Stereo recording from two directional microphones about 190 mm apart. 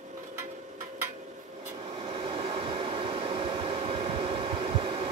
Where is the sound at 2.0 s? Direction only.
30° right (ahead or behind).